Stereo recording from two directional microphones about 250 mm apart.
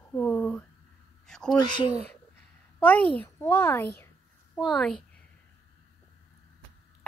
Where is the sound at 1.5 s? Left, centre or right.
Centre.